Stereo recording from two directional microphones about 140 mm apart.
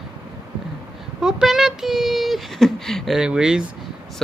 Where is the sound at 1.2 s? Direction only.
Centre (ahead or behind).